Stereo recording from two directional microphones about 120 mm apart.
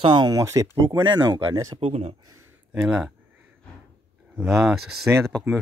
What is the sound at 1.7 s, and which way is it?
Speech, 60° right (ahead or behind).